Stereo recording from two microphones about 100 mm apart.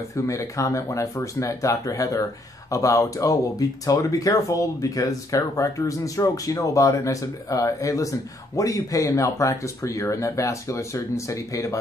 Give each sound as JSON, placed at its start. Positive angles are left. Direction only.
{"t": 0.1, "sound": "speech", "side_deg": 30}